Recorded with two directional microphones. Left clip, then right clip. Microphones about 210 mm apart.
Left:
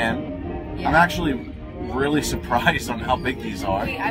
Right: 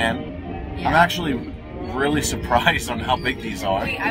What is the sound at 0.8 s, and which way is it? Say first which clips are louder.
A man's voice: right 1 dB; 15° right (ahead or behind).